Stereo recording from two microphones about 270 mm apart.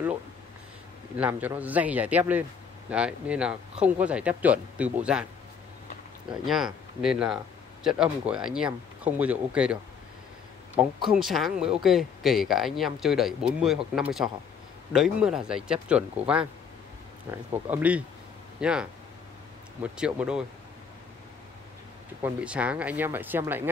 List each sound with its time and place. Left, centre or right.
1.1 s speech: centre
6.4 s speech: centre
11.1 s speech: centre
22.2 s speech: centre